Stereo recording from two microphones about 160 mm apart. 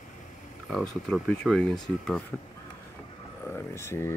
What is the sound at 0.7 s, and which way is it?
Speech, 5° left (ahead or behind).